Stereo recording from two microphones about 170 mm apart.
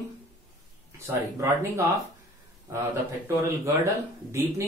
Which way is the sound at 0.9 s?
15° right (ahead or behind).